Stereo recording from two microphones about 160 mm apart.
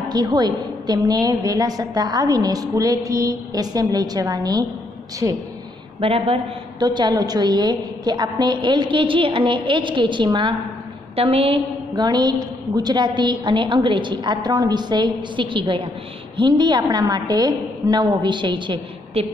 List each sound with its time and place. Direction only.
0.1 s a woman's voice: 25° right (ahead or behind)
5.9 s a woman's voice: 35° right (ahead or behind)